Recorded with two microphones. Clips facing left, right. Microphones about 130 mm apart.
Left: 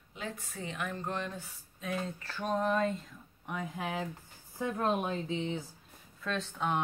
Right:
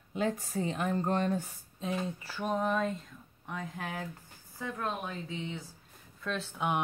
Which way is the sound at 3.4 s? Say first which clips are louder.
Left 2 dB; 10° left (ahead or behind).